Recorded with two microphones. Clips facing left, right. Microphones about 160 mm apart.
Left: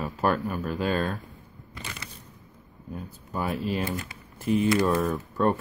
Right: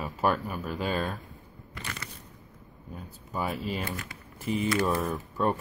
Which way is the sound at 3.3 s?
Centre (ahead or behind).